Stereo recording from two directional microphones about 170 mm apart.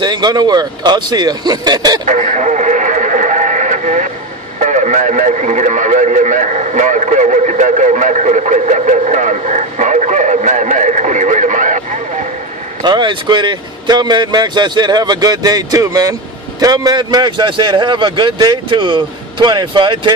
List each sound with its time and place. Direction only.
0.0 s a man's voice: 25° right (ahead or behind)
2.0 s radio: 50° right (ahead or behind)
4.6 s speech: 45° right (ahead or behind)
12.8 s a man's voice: 25° right (ahead or behind)